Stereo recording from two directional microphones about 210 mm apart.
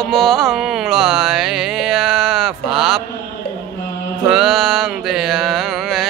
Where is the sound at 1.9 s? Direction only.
5° right (ahead or behind).